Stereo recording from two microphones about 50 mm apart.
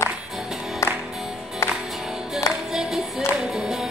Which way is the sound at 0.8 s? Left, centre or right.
Left.